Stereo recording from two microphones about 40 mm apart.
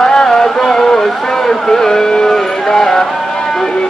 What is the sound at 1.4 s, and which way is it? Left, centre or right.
Music, centre.